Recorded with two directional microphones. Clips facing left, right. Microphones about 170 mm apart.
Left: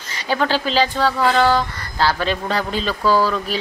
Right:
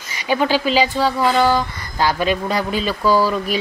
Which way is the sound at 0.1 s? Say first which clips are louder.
Right 2 dB; 10° right (ahead or behind).